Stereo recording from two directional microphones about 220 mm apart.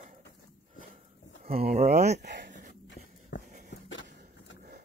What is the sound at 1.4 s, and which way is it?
Speech, 40° right (ahead or behind).